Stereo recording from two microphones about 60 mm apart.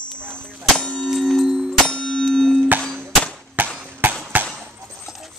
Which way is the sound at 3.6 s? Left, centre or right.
Right.